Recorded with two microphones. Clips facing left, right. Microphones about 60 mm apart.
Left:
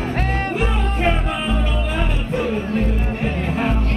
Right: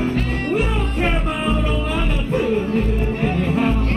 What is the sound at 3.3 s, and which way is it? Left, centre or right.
Music, left.